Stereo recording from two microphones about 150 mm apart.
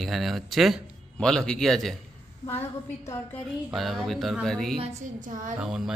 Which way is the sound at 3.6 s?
Centre (ahead or behind).